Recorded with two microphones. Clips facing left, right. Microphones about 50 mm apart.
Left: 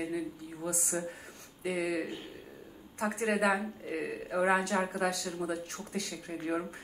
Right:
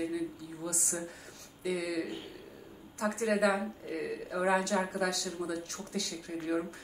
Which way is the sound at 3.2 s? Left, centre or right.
Left.